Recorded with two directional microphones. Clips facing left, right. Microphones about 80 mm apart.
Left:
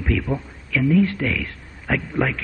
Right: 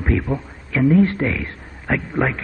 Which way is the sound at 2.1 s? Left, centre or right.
Right.